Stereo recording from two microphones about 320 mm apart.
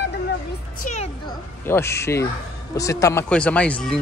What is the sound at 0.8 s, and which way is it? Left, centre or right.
Children playing, left.